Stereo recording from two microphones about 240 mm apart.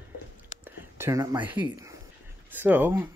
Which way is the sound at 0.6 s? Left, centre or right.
Centre.